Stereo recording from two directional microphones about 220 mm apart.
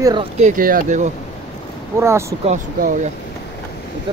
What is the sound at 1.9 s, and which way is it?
Speech, 10° right (ahead or behind).